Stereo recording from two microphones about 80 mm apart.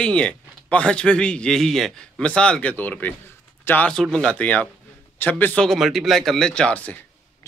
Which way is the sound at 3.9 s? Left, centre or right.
Centre.